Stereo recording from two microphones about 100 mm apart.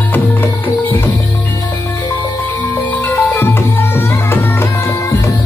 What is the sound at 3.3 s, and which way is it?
Music, 25° left (ahead or behind).